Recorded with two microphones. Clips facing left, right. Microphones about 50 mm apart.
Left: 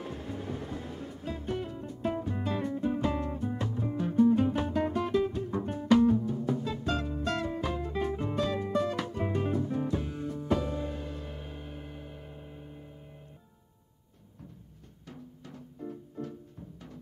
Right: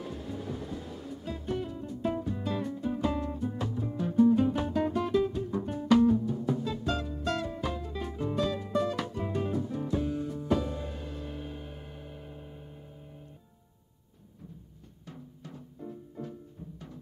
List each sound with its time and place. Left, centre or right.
0.0 s music: left